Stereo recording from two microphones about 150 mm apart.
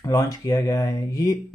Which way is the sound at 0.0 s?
20° left (ahead or behind).